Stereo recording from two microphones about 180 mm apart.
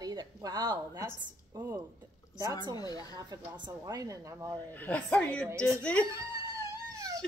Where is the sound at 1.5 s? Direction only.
10° right (ahead or behind).